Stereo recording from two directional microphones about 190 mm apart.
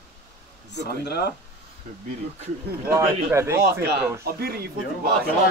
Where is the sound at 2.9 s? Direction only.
15° right (ahead or behind).